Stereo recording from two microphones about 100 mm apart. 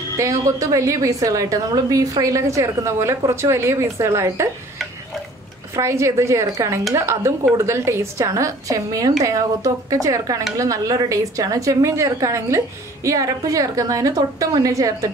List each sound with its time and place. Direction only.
0.2 s a woman's voice: 35° right (ahead or behind)
5.8 s a woman's voice: 30° right (ahead or behind)